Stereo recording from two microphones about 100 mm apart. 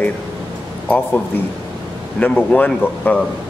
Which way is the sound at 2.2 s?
15° left (ahead or behind).